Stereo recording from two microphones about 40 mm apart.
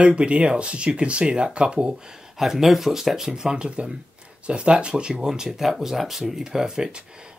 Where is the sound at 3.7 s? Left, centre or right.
Right.